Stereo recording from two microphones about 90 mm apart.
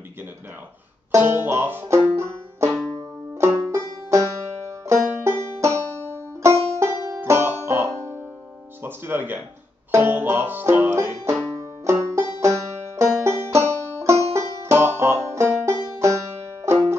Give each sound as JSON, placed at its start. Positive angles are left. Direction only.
{"t": 1.2, "sound": "banjo", "side_deg": -20}
{"t": 2.7, "sound": "banjo", "side_deg": 10}
{"t": 3.7, "sound": "banjo", "side_deg": -35}
{"t": 6.1, "sound": "music", "side_deg": -30}
{"t": 8.8, "sound": "speech", "side_deg": -25}
{"t": 9.8, "sound": "banjo", "side_deg": -25}
{"t": 15.0, "sound": "music", "side_deg": -30}